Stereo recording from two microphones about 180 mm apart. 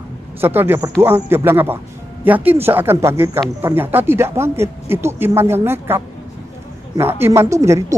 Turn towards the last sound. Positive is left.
turn(degrees=-15)  # may be behind; listen again after turning